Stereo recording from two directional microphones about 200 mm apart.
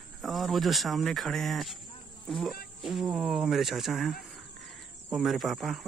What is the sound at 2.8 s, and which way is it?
Speech, centre (ahead or behind).